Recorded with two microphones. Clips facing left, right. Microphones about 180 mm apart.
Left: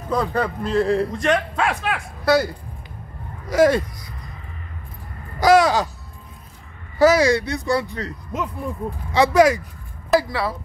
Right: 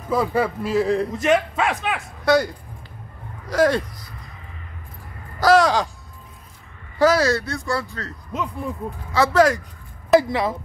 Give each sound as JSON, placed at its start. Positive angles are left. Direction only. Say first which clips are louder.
{"t": 0.1, "sound": "speech", "louder": "right 1 dB", "side_deg": -5}
{"t": 5.4, "sound": "caw", "louder": "left 1 dB", "side_deg": 10}
{"t": 7.0, "sound": "speech", "louder": "left 2 dB", "side_deg": 10}
{"t": 10.3, "sound": "speech", "louder": "right 2 dB", "side_deg": -20}